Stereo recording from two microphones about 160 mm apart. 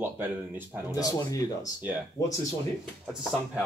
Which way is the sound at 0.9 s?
20° left (ahead or behind).